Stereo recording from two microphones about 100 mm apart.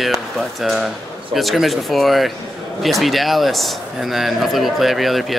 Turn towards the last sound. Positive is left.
turn(degrees=0)  # may be behind; listen again after turning